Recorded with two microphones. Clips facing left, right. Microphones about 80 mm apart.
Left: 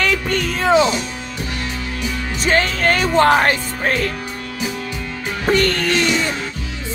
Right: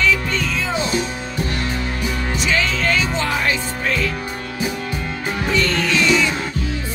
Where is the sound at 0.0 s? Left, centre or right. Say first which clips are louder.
Even; left.